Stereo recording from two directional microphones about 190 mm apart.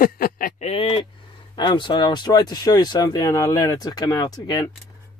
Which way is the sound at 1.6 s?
25° left (ahead or behind).